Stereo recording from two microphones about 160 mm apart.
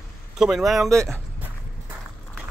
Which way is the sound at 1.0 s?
15° right (ahead or behind).